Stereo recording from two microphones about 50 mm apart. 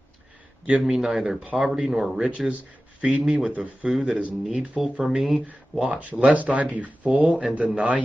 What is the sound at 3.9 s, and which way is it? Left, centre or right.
Speech, centre.